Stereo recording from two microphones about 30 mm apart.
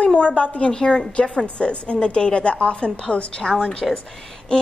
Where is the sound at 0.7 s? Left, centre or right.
Left.